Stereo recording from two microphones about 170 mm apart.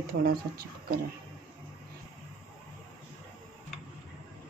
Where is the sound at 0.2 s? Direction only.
60° right (ahead or behind).